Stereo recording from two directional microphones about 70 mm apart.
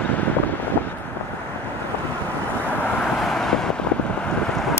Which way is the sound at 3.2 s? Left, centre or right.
Centre.